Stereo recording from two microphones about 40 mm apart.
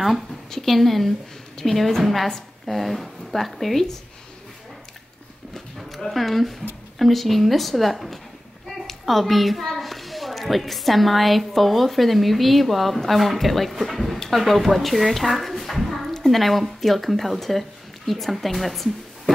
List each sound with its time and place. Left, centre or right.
0.5 s a woman's voice: centre
5.8 s a sound: centre
7.0 s a woman's voice: centre